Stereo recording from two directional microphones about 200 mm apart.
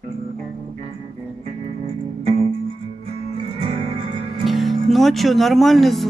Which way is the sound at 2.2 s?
30° right (ahead or behind).